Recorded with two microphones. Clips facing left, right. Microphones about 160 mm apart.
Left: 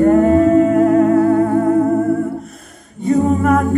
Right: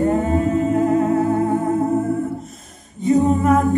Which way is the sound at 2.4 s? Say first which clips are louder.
Left 3 dB; 65° left (ahead or behind).